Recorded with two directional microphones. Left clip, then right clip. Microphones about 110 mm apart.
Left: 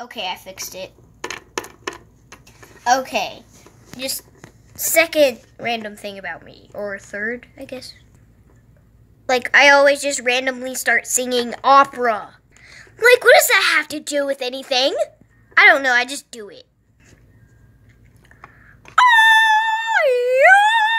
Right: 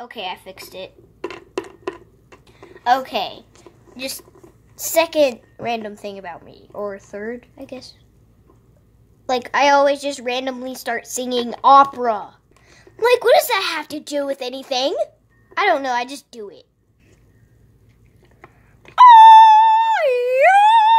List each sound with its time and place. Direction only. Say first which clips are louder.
0.0 s a woman's voice: left 2 dB; 20° right (ahead or behind)
1.9 s a sound: even; 30° right (ahead or behind)
2.9 s a woman's voice: even; 20° right (ahead or behind)
9.2 s a woman's voice: left 4 dB; 25° right (ahead or behind)
18.9 s dog: right 6 dB; 20° right (ahead or behind)